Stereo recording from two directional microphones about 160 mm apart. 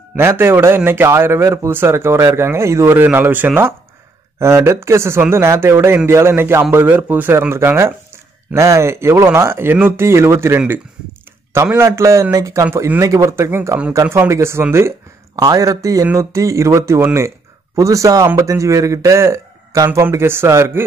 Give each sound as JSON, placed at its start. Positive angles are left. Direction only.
{"t": 0.1, "sound": "a man's voice", "side_deg": -15}